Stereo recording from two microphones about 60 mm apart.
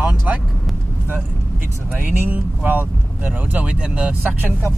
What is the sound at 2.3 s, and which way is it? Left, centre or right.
Speech, right.